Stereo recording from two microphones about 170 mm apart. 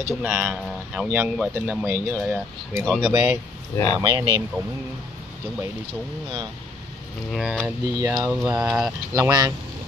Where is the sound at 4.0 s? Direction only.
25° right (ahead or behind).